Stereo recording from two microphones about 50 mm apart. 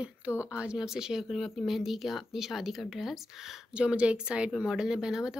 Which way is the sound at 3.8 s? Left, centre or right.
Right.